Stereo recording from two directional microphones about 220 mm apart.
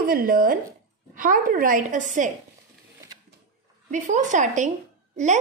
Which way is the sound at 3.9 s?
35° right (ahead or behind).